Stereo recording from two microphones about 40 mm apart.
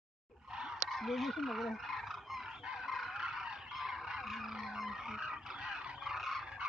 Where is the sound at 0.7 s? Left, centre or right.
Centre.